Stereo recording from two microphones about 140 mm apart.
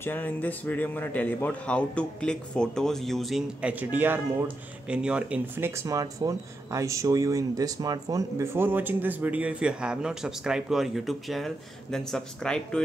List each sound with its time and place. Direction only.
0.0 s speech: 10° left (ahead or behind); by 5.7 s 10° right (ahead or behind)
5.8 s speech: 25° right (ahead or behind); by 12.8 s 5° left (ahead or behind)